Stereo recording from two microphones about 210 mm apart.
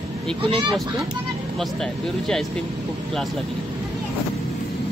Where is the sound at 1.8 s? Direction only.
Centre (ahead or behind).